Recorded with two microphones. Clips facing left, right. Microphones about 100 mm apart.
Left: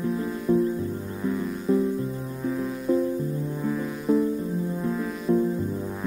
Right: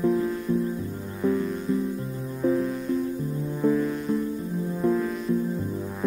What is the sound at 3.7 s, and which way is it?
Music, centre (ahead or behind).